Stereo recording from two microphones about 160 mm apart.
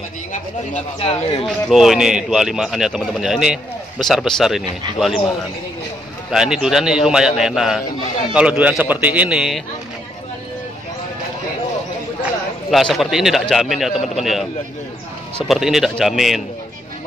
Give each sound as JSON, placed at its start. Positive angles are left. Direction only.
{"t": 0.9, "sound": "speech", "side_deg": 35}
{"t": 1.7, "sound": "a man's voice", "side_deg": 0}
{"t": 6.3, "sound": "a man's voice", "side_deg": -5}
{"t": 12.7, "sound": "a man's voice", "side_deg": 0}